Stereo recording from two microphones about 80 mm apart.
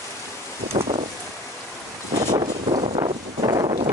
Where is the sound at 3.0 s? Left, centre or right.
Right.